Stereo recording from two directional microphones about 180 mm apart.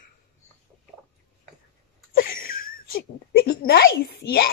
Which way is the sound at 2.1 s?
55° left (ahead or behind).